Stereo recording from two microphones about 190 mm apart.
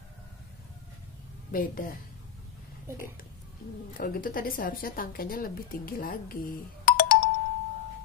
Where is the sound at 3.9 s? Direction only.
45° left (ahead or behind).